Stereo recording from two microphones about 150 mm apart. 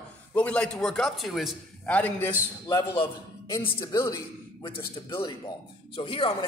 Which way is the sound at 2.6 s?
25° left (ahead or behind).